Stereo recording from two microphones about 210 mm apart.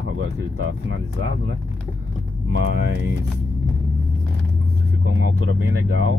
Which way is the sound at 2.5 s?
65° right (ahead or behind).